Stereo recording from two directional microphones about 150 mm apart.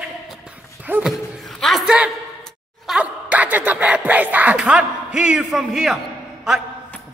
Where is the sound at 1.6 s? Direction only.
Centre (ahead or behind).